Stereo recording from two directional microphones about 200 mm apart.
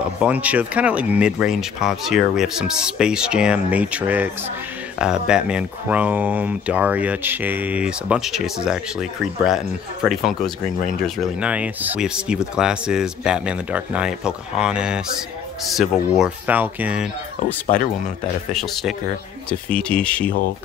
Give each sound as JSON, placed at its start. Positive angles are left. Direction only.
{"t": 0.2, "sound": "speech", "side_deg": -5}
{"t": 17.7, "sound": "speech", "side_deg": 40}
{"t": 18.5, "sound": "speech", "side_deg": 0}